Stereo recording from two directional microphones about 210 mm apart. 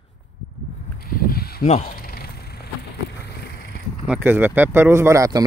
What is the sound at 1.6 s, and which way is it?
Speech, 30° left (ahead or behind).